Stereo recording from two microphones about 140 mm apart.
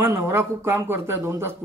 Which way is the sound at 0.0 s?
20° right (ahead or behind).